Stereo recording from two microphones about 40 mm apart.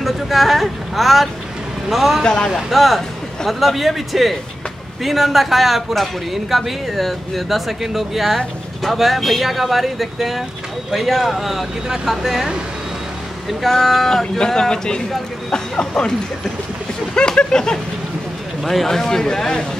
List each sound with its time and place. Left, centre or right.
0.0 s speech: centre
2.2 s speech: centre
2.7 s speech: centre
13.5 s speech: centre
14.4 s speech: centre
18.6 s speech: centre